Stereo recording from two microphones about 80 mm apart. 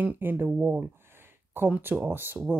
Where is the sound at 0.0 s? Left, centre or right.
Right.